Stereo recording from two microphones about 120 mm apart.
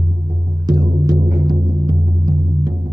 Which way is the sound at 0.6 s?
35° right (ahead or behind).